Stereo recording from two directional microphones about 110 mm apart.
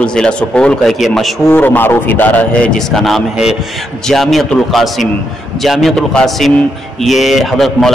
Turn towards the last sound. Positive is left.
turn(degrees=0)  # may be behind; listen again after turning